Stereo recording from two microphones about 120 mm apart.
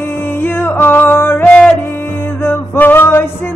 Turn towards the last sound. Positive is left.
turn(degrees=20)  # may be behind; listen again after turning